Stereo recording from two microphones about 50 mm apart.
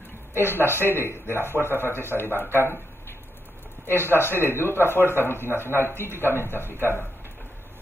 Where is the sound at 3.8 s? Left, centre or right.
Left.